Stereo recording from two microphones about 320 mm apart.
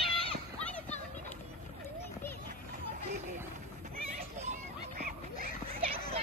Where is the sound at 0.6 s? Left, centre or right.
Centre.